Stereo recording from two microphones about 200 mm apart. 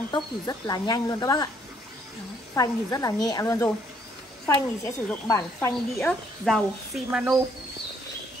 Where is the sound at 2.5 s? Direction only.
15° left (ahead or behind).